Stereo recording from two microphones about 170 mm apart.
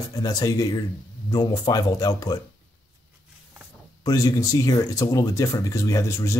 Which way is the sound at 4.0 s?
20° left (ahead or behind).